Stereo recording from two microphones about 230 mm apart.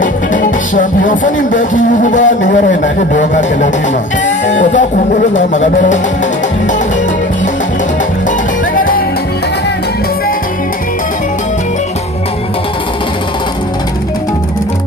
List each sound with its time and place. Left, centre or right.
0.0 s music: left
8.7 s music: left